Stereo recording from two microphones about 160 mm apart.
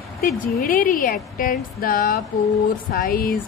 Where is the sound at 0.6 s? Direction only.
60° left (ahead or behind).